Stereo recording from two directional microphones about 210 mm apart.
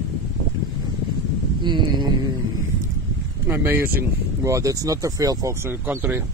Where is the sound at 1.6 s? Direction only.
20° right (ahead or behind).